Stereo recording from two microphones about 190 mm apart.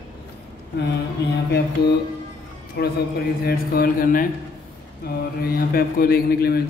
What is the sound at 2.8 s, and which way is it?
A woman's voice, 55° left (ahead or behind).